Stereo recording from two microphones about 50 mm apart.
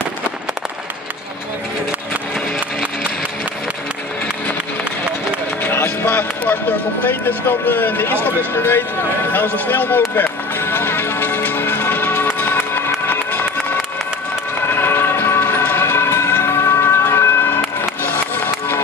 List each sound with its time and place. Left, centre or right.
5.6 s music: left
8.5 s speech: left
9.3 s music: left
14.7 s vehicle: left
18.0 s music: left